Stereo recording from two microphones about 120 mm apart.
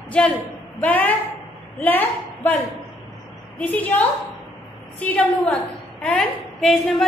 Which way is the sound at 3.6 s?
15° left (ahead or behind).